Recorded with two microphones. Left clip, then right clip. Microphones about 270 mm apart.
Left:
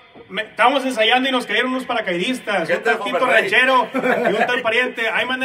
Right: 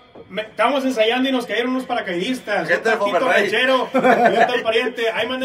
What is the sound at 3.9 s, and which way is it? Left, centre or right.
Speech, right.